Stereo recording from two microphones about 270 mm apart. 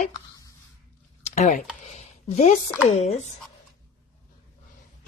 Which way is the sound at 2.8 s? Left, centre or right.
Left.